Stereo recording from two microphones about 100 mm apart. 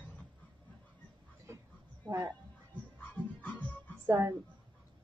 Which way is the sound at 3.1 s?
15° left (ahead or behind).